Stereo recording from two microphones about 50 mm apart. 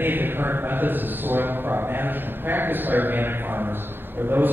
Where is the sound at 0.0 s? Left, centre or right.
Right.